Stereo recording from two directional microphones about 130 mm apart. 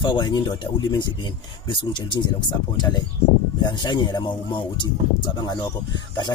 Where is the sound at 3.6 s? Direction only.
35° left (ahead or behind).